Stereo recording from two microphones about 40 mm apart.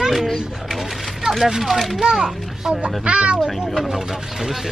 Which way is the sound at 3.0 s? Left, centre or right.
Right.